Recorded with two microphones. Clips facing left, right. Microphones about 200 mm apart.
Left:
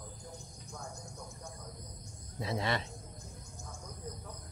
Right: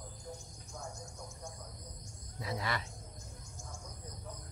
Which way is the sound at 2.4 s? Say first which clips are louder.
Left 4 dB; 25° left (ahead or behind).